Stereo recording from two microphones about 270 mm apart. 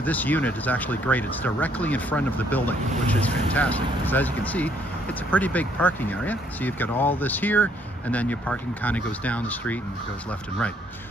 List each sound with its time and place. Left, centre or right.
0.0 s speech: centre